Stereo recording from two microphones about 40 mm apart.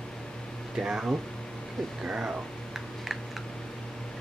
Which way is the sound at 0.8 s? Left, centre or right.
Centre.